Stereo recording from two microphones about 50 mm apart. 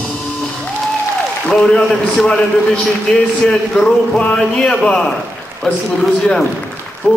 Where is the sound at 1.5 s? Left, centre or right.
Centre.